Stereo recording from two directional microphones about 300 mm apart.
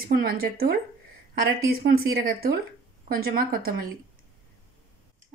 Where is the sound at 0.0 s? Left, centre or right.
Right.